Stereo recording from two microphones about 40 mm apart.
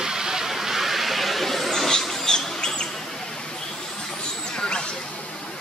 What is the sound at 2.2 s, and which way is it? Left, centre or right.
Rodents, centre.